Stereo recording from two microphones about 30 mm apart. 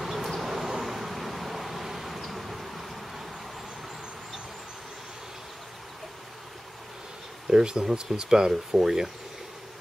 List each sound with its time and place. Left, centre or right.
0.0 s bee: centre
0.4 s vehicle: centre
7.4 s speech: right